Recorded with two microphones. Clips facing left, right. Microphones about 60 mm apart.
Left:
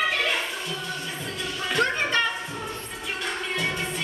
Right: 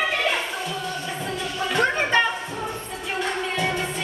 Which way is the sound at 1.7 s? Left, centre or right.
Centre.